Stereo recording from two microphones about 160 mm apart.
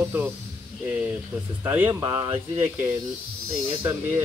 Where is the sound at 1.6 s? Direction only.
15° right (ahead or behind).